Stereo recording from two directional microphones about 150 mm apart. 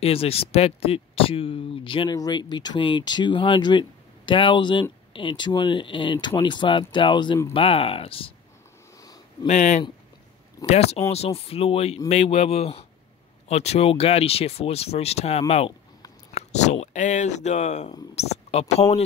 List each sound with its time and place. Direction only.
0.0 s speech: 40° left (ahead or behind)
9.5 s speech: 50° left (ahead or behind)